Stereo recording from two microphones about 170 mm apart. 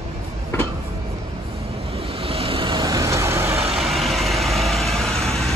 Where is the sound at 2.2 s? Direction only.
35° right (ahead or behind); by 3.6 s 15° right (ahead or behind).